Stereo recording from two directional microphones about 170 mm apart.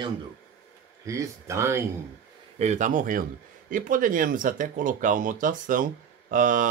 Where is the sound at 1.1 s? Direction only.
15° right (ahead or behind).